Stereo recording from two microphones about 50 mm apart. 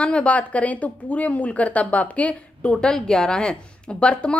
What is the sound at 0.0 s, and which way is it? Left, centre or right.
A woman's voice, left.